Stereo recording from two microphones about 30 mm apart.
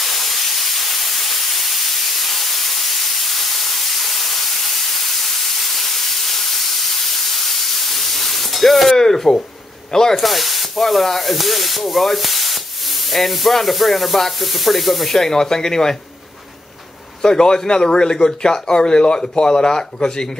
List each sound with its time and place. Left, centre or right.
0.0 s steam: centre
8.9 s speech: centre
10.1 s a sound: centre
15.1 s speech: centre
17.2 s speech: left